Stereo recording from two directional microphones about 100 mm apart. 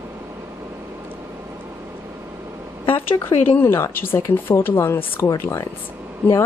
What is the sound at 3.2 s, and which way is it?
Speech, 20° left (ahead or behind).